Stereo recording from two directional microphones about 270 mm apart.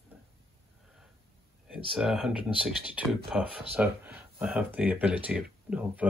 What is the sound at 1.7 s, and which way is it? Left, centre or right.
Speech, centre.